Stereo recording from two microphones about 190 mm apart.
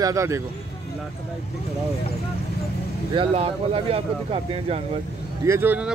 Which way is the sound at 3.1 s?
30° right (ahead or behind).